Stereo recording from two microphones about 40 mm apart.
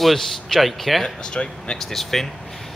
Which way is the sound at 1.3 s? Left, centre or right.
Left.